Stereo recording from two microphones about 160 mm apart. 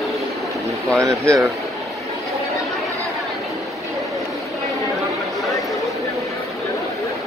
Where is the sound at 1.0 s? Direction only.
20° right (ahead or behind).